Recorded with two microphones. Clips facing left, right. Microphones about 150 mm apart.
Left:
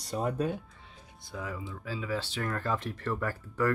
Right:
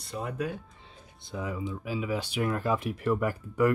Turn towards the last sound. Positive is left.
turn(degrees=-15)  # may be behind; listen again after turning